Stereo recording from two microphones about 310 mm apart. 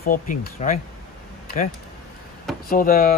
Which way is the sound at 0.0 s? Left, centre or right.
Left.